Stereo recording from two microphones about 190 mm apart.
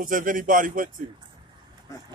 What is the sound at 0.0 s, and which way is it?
Speech, 45° right (ahead or behind).